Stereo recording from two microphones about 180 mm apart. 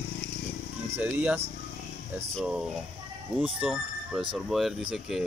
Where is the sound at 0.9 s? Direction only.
10° right (ahead or behind).